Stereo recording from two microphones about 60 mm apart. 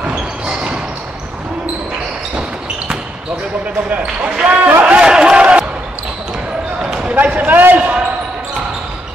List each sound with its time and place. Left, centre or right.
0.0 s basketball bounce: centre
3.9 s speech: centre
4.8 s a sound: centre
6.8 s basketball bounce: centre
7.2 s basketball bounce: right